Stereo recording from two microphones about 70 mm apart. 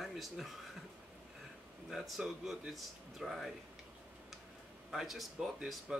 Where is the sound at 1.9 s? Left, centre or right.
Centre.